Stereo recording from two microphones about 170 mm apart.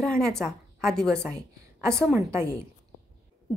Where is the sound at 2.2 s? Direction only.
15° right (ahead or behind).